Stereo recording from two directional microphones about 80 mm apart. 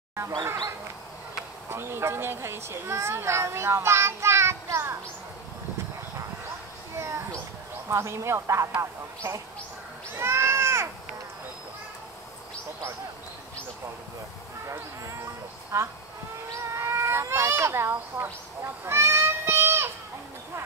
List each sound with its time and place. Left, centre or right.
1.7 s speech: right
7.0 s a sound: right
7.9 s speech: right
8.7 s speech: right
15.7 s speech: right